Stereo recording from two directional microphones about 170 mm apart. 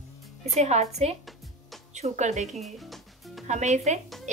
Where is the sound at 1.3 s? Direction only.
Centre (ahead or behind).